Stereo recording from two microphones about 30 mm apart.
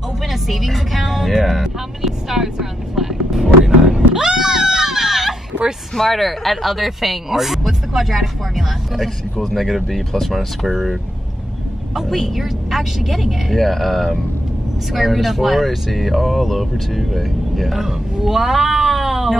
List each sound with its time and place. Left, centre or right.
0.3 s speech: centre
2.0 s speech: centre
3.6 s a sound: centre
5.9 s speech: centre